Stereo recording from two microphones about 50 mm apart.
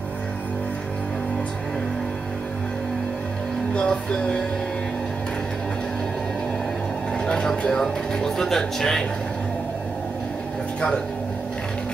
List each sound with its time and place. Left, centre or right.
3.7 s speech: centre
7.2 s speech: centre